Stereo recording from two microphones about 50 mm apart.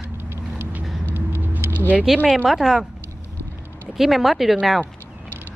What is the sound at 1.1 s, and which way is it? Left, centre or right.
Vehicle, right.